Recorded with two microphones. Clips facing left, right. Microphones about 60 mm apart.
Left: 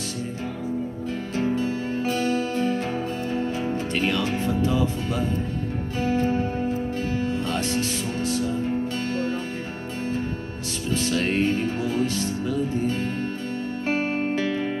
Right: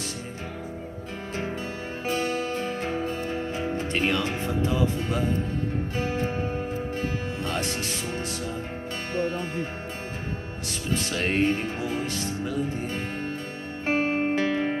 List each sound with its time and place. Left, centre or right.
1.3 s music: right
3.7 s speech: right
7.5 s music: right
10.9 s music: right